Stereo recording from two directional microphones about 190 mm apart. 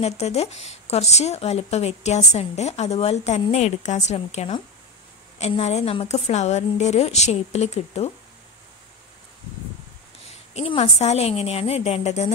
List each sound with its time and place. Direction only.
0.0 s speech: 35° left (ahead or behind)
10.5 s speech: 30° left (ahead or behind)